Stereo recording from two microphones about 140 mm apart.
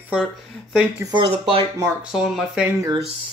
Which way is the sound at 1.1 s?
40° right (ahead or behind).